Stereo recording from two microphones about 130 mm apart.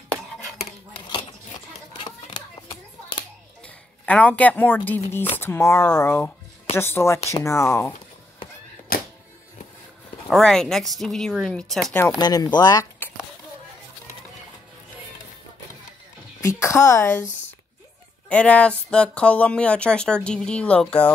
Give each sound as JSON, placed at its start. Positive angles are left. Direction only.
{"t": 0.5, "sound": "cutlery", "side_deg": 0}
{"t": 2.0, "sound": "a sound", "side_deg": 35}
{"t": 3.6, "sound": "a woman's voice", "side_deg": 10}
{"t": 10.3, "sound": "speech", "side_deg": 5}
{"t": 12.2, "sound": "speech", "side_deg": 30}
{"t": 16.3, "sound": "a woman's voice", "side_deg": 20}
{"t": 18.3, "sound": "speech", "side_deg": 10}